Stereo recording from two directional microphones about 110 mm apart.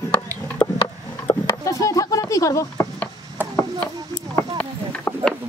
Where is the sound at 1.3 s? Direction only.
50° left (ahead or behind).